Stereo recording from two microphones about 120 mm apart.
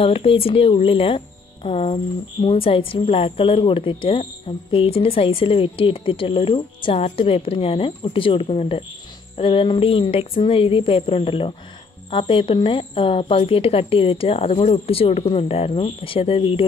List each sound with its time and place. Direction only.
0.0 s a woman's voice: 50° left (ahead or behind)